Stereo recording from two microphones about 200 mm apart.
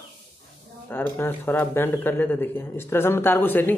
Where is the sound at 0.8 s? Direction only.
10° left (ahead or behind).